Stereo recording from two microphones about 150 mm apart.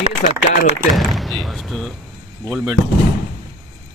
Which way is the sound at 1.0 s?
Centre (ahead or behind).